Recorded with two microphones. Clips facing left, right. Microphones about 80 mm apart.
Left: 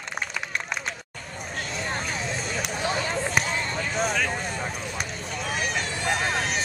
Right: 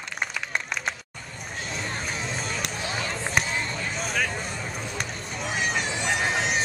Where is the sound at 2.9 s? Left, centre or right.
Centre.